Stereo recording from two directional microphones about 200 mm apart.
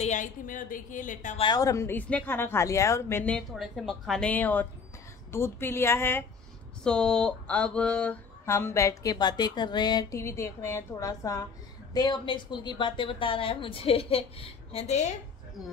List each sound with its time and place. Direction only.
0.0 s a woman's voice: 40° left (ahead or behind)
1.4 s a sound: 20° left (ahead or behind)
11.9 s speech: 20° left (ahead or behind)